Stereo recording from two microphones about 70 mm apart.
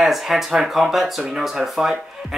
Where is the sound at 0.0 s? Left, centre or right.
Centre.